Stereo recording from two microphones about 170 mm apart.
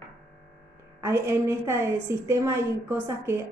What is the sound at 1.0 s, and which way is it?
Speech, 15° right (ahead or behind).